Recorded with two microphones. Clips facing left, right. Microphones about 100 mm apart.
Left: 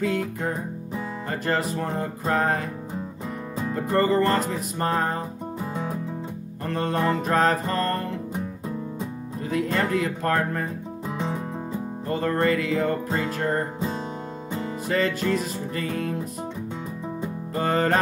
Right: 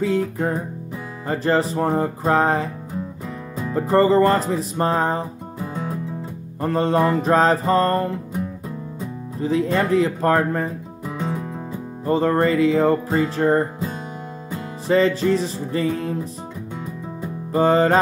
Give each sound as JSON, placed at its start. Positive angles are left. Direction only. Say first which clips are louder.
{"t": 1.3, "sound": "music", "louder": "right 6 dB", "side_deg": -30}
{"t": 3.7, "sound": "music", "louder": "right 6 dB", "side_deg": -30}
{"t": 6.6, "sound": "music", "louder": "right 6 dB", "side_deg": -30}
{"t": 9.4, "sound": "music", "louder": "right 5 dB", "side_deg": -30}
{"t": 12.1, "sound": "music", "louder": "right 5 dB", "side_deg": -30}
{"t": 14.9, "sound": "music", "louder": "right 7 dB", "side_deg": -30}
{"t": 17.6, "sound": "music", "louder": "right 7 dB", "side_deg": -30}